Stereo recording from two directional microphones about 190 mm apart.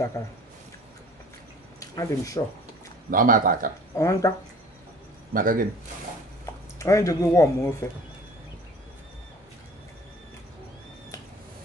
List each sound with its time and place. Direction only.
0.2 s speech: 15° left (ahead or behind)
1.8 s speech: 15° left (ahead or behind)
3.1 s speech: 45° right (ahead or behind)
3.9 s speech: 15° left (ahead or behind)
5.3 s speech: 45° right (ahead or behind)
6.8 s speech: 15° left (ahead or behind)